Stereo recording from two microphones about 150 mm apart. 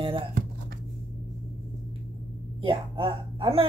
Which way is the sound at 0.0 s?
35° right (ahead or behind).